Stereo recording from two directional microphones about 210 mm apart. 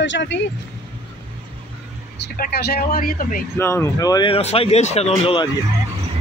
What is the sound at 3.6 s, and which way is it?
Speech, 10° left (ahead or behind).